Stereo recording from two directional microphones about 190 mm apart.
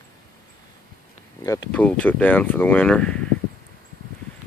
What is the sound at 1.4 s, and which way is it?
Speech, 20° left (ahead or behind).